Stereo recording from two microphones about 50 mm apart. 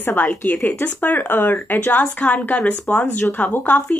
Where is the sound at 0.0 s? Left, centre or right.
Left.